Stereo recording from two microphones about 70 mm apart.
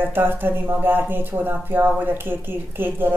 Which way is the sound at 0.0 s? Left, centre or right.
Right.